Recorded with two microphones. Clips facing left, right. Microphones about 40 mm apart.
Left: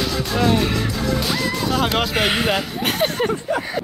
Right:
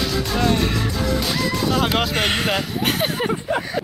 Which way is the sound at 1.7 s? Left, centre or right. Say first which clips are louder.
Left 1 dB; centre.